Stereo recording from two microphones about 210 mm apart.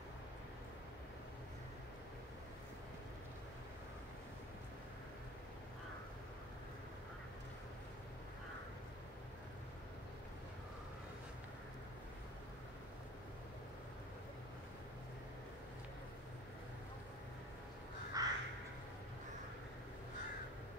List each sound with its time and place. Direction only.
18.2 s crow: 15° right (ahead or behind)